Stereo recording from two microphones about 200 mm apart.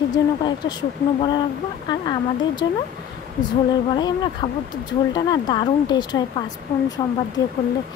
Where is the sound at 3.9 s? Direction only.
20° left (ahead or behind).